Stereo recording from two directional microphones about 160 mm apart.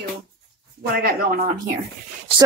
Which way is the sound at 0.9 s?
65° right (ahead or behind).